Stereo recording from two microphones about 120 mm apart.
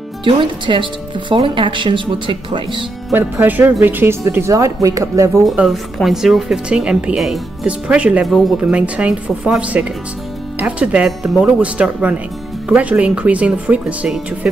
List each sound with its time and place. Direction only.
0.2 s speech: 45° right (ahead or behind)
3.1 s speech: 15° right (ahead or behind)
5.7 s speech: centre (ahead or behind)